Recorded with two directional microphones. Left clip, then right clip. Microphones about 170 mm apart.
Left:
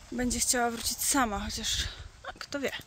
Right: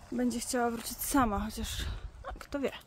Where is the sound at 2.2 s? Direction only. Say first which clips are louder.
Left 1 dB; 10° right (ahead or behind).